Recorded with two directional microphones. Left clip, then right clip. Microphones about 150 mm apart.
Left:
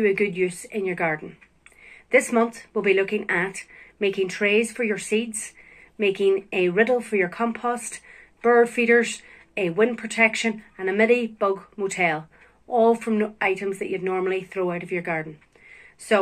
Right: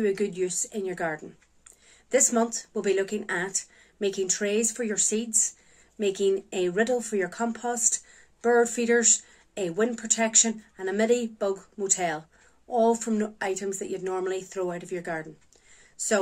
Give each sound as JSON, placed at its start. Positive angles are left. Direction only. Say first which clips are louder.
{"t": 0.0, "sound": "speech", "louder": "left 5 dB", "side_deg": -35}